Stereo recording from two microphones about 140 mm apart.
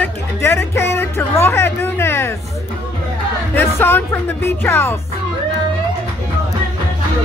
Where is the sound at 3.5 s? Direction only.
15° left (ahead or behind).